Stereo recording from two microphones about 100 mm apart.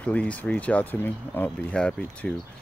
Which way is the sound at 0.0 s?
15° left (ahead or behind).